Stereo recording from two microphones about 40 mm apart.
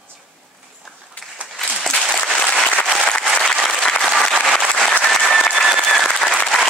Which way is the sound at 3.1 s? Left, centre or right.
Centre.